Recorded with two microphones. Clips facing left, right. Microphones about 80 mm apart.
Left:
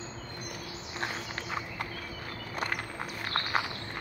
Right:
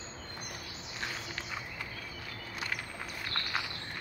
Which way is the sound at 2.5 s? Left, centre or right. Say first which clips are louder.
Left 5 dB; left.